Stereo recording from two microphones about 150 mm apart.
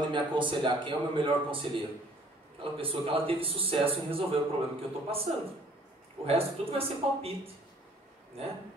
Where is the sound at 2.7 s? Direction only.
40° right (ahead or behind).